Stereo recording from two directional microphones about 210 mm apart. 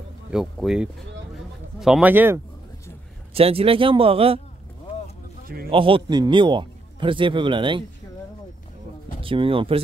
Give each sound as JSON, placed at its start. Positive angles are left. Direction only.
{"t": 0.3, "sound": "speech", "side_deg": 0}
{"t": 1.3, "sound": "a sound", "side_deg": 0}
{"t": 3.3, "sound": "a man's voice", "side_deg": -25}
{"t": 5.7, "sound": "a man's voice", "side_deg": -25}
{"t": 9.2, "sound": "a man's voice", "side_deg": -25}